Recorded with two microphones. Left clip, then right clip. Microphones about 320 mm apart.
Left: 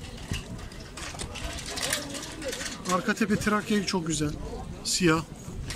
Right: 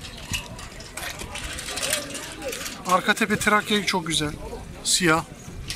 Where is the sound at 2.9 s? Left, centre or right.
Centre.